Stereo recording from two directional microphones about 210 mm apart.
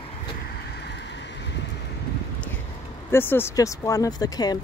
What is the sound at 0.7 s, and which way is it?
Vehicle, 55° left (ahead or behind).